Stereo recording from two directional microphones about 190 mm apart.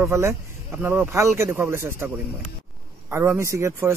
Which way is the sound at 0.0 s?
15° right (ahead or behind).